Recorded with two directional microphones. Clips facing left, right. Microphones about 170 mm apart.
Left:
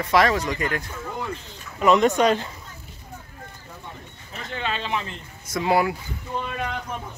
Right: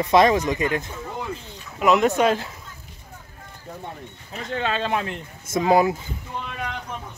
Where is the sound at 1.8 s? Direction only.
5° right (ahead or behind).